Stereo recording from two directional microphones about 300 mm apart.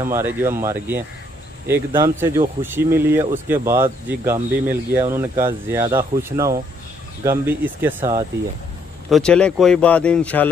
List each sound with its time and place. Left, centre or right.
0.0 s speech: centre
9.1 s speech: centre